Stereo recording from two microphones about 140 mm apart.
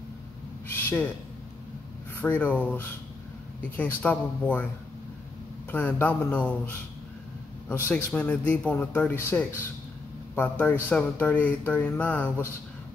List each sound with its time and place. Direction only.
0.7 s owl: 15° left (ahead or behind)
2.1 s speech: 15° left (ahead or behind)
5.7 s speech: 15° left (ahead or behind)